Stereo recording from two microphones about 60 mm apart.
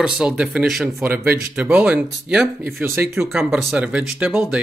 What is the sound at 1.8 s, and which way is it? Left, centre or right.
Speech, centre.